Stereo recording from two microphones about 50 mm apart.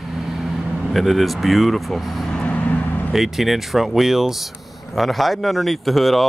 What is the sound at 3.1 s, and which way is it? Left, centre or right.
Speech, centre.